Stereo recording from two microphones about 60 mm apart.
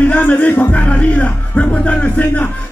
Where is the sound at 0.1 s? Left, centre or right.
Left.